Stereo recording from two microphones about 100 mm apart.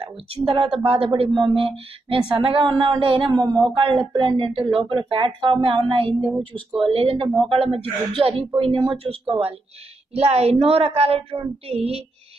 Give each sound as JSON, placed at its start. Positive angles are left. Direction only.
{"t": 0.0, "sound": "a woman's voice", "side_deg": -70}
{"t": 3.7, "sound": "speech", "side_deg": -55}
{"t": 4.6, "sound": "a woman's voice", "side_deg": -60}
{"t": 8.5, "sound": "speech", "side_deg": -60}
{"t": 9.3, "sound": "a woman's voice", "side_deg": -75}
{"t": 10.1, "sound": "speech", "side_deg": -90}